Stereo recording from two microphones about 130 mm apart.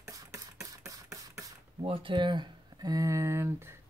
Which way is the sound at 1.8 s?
40° right (ahead or behind).